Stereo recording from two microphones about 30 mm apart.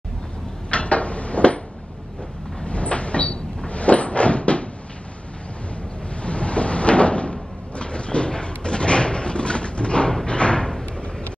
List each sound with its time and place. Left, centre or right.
0.7 s cupboard open or close: left
2.6 s cupboard open or close: left
6.2 s cupboard open or close: left
10.2 s a sound: left